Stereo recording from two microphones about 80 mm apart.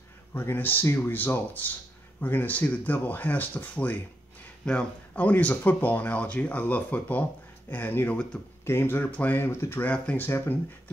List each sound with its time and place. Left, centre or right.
0.3 s speech: left
9.8 s speech: centre
10.2 s speech: left